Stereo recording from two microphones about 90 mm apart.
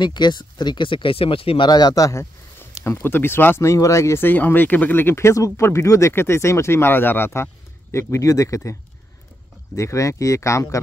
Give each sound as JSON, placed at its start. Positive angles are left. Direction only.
{"t": 0.0, "sound": "speech", "side_deg": 55}
{"t": 1.7, "sound": "speech", "side_deg": 50}
{"t": 2.8, "sound": "speech", "side_deg": 25}
{"t": 9.8, "sound": "speech", "side_deg": 35}